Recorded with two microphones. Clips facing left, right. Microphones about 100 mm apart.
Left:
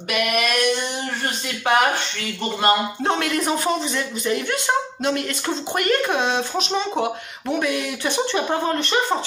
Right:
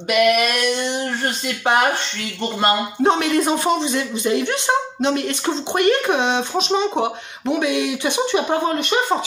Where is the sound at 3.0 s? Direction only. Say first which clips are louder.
Right 5 dB; 20° right (ahead or behind).